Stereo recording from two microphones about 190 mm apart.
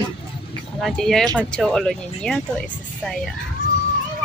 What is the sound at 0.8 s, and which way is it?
Speech, centre (ahead or behind).